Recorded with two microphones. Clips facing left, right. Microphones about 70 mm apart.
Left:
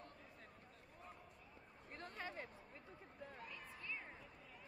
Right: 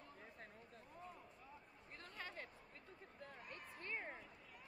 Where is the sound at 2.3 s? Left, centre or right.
Centre.